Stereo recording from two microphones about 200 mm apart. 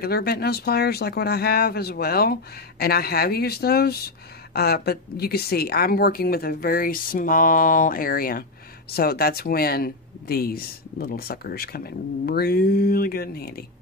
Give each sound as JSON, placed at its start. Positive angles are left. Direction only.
{"t": 0.0, "sound": "speech", "side_deg": 50}